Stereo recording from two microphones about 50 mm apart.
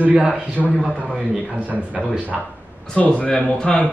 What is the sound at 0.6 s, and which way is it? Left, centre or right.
Speech, centre.